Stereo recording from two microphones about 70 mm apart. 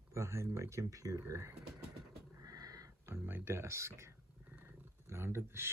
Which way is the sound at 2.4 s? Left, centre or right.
Right.